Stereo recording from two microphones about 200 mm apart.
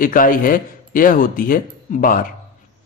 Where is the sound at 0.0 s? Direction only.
45° left (ahead or behind).